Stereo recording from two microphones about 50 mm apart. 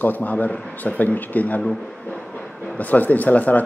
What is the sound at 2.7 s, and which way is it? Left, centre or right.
Speech, left.